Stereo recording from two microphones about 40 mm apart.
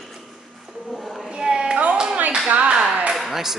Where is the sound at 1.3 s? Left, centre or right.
Centre.